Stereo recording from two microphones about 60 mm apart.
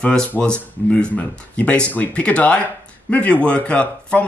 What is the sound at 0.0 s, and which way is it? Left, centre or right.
Speech, centre.